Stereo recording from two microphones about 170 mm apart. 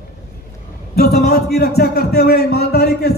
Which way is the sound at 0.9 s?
65° left (ahead or behind).